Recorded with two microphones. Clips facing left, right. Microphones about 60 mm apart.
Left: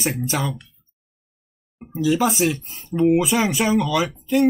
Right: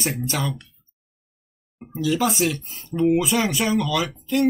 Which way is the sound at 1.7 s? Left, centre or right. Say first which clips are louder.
Left 3 dB; centre.